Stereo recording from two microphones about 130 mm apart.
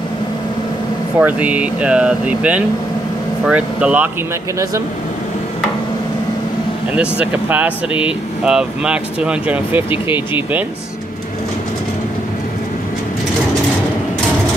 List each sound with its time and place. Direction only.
1.2 s speech: 10° right (ahead or behind)
7.0 s speech: 10° right (ahead or behind)
9.8 s speech: 40° left (ahead or behind)